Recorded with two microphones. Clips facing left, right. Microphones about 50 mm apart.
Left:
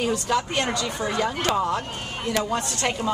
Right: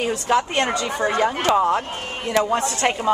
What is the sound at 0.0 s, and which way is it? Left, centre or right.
Speech, right.